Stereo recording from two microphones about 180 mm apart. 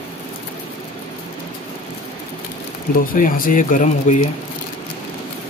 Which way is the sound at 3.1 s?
50° left (ahead or behind).